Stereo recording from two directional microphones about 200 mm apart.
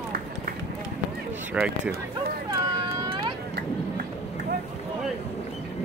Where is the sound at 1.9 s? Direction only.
50° right (ahead or behind).